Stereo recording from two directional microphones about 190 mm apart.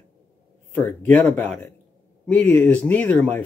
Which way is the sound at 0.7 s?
10° left (ahead or behind).